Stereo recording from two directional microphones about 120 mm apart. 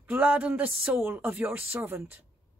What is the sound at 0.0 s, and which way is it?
Speech, 15° right (ahead or behind).